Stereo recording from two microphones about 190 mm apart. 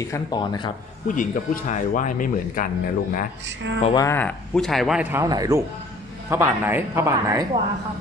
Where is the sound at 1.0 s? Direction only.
45° left (ahead or behind).